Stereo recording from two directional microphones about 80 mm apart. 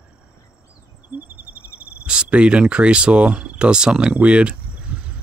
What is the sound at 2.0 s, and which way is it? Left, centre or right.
Speech, centre.